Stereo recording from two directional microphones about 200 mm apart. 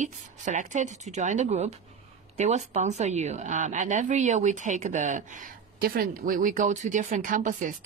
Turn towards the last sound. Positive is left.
turn(degrees=-40)  # may be behind; listen again after turning